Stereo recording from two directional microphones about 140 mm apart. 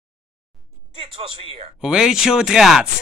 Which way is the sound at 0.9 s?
40° right (ahead or behind).